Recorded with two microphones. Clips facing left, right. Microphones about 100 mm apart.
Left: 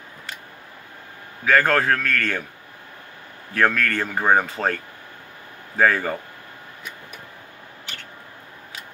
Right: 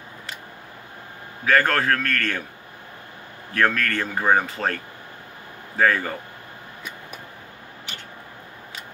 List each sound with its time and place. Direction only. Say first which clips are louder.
1.5 s speech: left 1 dB; 25° left (ahead or behind)
3.5 s speech: left 1 dB; 20° left (ahead or behind)
5.8 s speech: left 1 dB; 25° left (ahead or behind)